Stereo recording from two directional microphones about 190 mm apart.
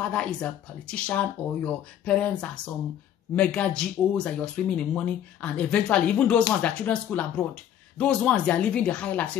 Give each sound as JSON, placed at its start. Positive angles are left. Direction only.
{"t": 0.1, "sound": "speech", "side_deg": 5}